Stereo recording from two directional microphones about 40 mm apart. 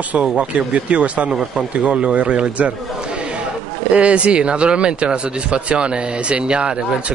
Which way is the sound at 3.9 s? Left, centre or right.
Right.